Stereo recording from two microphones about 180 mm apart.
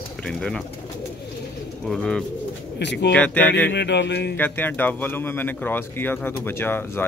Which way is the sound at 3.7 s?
70° left (ahead or behind).